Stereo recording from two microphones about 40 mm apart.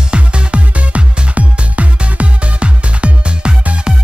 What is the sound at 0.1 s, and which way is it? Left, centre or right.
Music, right.